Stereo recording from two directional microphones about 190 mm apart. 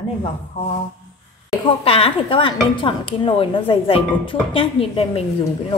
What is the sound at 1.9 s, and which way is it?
Speech, 30° left (ahead or behind).